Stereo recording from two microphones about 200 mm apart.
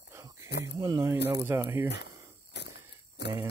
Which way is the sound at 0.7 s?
20° right (ahead or behind).